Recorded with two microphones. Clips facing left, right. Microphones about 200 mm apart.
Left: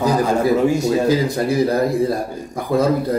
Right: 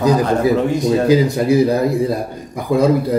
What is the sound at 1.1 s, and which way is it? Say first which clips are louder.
Speech: right 4 dB; 15° right (ahead or behind).